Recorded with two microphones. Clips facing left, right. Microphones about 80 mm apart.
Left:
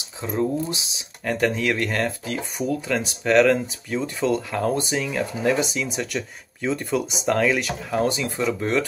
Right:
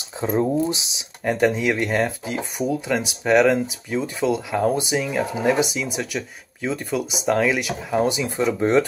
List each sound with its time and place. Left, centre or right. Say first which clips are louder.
0.2 s speech: right 4 dB; right; by 8.3 s centre
8.5 s speech: right 5 dB; right